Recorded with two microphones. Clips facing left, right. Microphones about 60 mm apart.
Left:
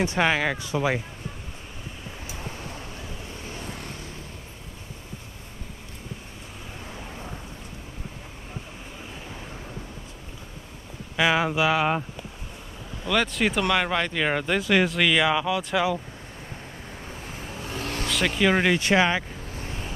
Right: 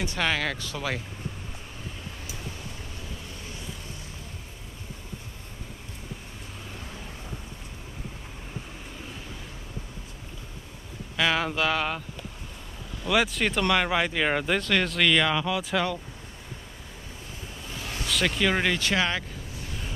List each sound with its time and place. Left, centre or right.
0.0 s speech: left
3.4 s vehicle: left
11.1 s speech: centre
13.1 s speech: centre
17.6 s vehicle: left
18.0 s speech: centre
18.8 s speech: left
19.6 s vehicle: left